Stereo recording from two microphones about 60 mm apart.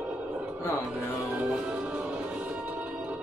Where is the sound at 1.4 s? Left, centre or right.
Right.